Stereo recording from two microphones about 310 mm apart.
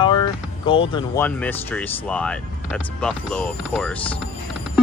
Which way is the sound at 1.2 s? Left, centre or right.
Centre.